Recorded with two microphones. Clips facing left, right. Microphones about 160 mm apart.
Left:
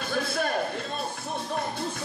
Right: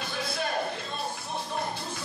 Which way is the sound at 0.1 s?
50° left (ahead or behind).